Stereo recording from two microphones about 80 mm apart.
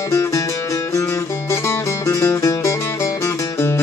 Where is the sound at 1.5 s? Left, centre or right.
Left.